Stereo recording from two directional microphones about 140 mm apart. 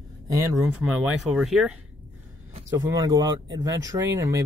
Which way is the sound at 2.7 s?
20° right (ahead or behind).